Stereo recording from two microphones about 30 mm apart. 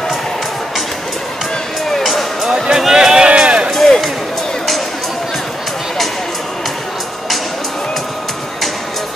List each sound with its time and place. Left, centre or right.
2.5 s music: right
2.9 s run: right
3.7 s music: centre